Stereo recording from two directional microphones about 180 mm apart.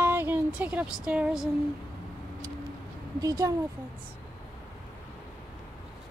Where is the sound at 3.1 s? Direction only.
20° right (ahead or behind).